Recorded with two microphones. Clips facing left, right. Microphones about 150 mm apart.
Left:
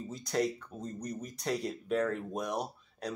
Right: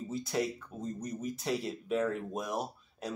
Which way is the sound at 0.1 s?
5° right (ahead or behind).